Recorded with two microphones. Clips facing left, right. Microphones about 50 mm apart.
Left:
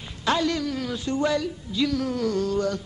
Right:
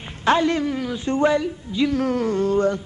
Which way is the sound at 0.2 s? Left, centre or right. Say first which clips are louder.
Right 5 dB; right.